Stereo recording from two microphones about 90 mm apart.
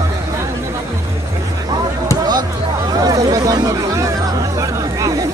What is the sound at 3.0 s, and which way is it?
Chatter, 45° right (ahead or behind).